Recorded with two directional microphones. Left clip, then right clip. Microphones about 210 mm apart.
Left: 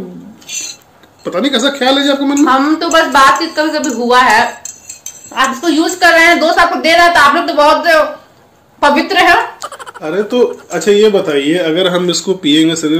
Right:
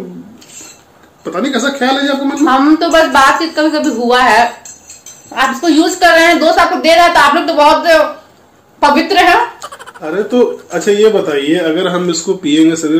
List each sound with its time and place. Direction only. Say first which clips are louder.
1.2 s a man's voice: left 2 dB; 45° left (ahead or behind)
2.4 s a woman's voice: right 3 dB; 5° right (ahead or behind)
10.0 s speech: even; 40° left (ahead or behind)